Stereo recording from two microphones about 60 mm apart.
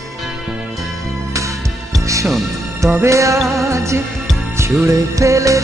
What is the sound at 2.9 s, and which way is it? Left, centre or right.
Music, right.